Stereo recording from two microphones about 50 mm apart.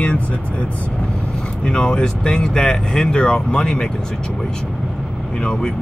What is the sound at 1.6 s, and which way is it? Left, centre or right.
Speech, centre.